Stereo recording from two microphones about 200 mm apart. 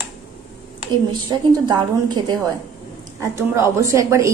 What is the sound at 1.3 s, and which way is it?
A woman's voice, 20° right (ahead or behind).